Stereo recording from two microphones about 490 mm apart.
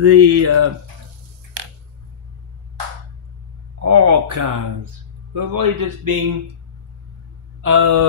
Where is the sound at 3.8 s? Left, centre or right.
Right.